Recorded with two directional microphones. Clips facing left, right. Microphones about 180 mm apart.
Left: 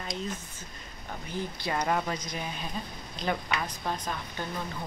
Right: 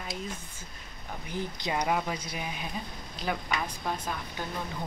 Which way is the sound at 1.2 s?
15° right (ahead or behind).